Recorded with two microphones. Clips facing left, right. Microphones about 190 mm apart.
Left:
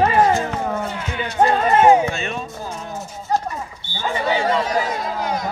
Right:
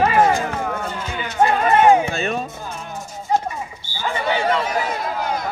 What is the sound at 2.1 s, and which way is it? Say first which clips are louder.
Speech: right 3 dB; 40° right (ahead or behind).